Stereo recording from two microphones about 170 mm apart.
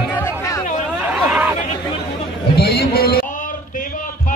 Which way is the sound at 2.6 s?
65° left (ahead or behind).